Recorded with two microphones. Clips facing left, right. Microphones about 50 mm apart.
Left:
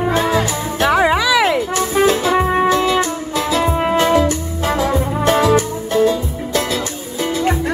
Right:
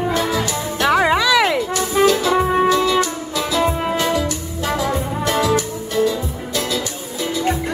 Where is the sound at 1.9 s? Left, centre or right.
Left.